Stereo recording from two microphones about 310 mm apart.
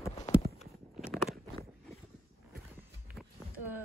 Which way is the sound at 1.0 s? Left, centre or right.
Centre.